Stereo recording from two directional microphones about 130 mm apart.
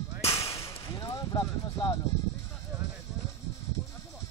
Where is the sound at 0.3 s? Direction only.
25° left (ahead or behind).